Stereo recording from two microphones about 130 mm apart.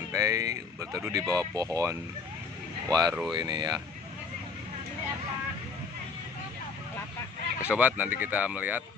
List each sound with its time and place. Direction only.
0.1 s speech: 25° right (ahead or behind)
7.6 s speech: 10° right (ahead or behind)